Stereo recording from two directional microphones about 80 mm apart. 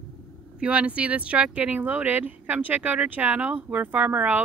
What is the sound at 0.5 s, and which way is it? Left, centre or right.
Speech, centre.